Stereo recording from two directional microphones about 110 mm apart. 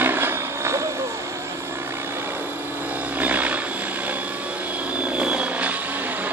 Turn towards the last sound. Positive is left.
turn(degrees=-10)  # may be behind; listen again after turning